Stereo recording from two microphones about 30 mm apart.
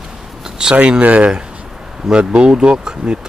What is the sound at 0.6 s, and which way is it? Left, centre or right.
Speech, right.